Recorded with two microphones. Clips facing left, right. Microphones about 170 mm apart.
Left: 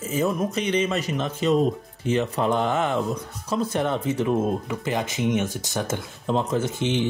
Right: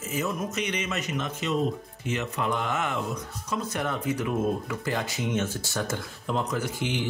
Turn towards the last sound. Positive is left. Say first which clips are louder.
# left 6 dB
turn(degrees=25)  # may be behind; listen again after turning